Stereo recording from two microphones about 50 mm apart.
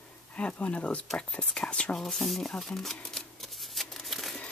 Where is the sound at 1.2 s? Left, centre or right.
Left.